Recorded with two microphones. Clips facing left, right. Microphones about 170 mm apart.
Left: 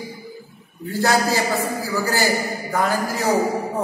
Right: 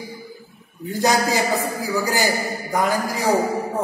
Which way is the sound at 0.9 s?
15° right (ahead or behind).